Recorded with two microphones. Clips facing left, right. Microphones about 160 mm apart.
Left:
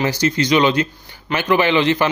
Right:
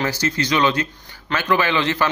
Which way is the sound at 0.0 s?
20° left (ahead or behind).